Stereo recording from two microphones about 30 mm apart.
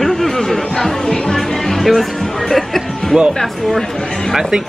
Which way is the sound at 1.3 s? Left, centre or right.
Centre.